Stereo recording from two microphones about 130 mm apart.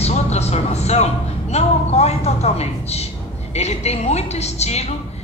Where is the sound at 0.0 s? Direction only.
55° left (ahead or behind).